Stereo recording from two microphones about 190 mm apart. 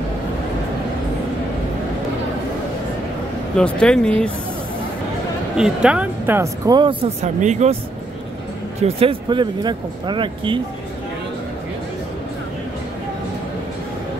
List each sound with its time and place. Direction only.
3.8 s speech: 5° left (ahead or behind)
5.6 s speech: 5° right (ahead or behind); by 7.1 s 25° right (ahead or behind)
7.3 s speech: 40° right (ahead or behind)
8.8 s speech: 25° right (ahead or behind)